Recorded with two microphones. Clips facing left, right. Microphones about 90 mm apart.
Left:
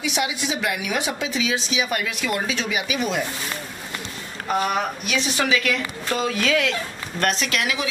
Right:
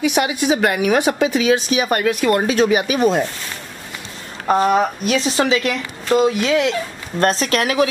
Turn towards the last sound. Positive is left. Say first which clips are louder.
# right 8 dB
turn(degrees=-45)  # may be behind; listen again after turning